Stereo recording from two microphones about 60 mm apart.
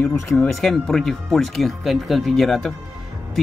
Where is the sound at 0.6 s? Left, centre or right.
Centre.